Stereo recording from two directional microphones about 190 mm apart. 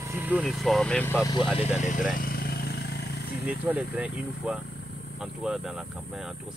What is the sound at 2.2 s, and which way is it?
Vehicle, 50° left (ahead or behind).